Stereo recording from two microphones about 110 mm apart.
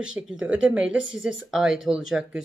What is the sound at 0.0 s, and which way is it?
Speech, 10° right (ahead or behind).